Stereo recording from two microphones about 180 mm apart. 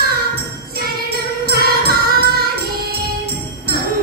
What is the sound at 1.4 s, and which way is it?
Music, 60° right (ahead or behind).